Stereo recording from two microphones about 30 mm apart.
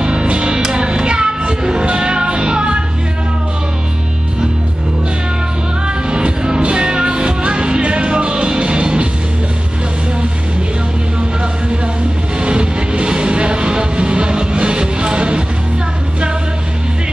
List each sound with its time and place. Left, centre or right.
0.0 s music: right
5.9 s music: right
12.4 s music: right